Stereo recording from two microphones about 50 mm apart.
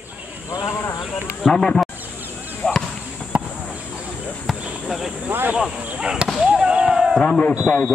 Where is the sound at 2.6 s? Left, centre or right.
Centre.